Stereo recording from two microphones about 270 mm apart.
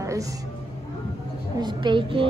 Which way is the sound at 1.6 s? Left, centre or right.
Centre.